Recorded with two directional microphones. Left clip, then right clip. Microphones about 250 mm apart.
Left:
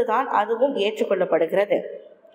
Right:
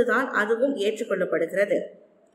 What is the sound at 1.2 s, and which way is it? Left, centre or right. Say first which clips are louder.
Speech: left 6 dB; left.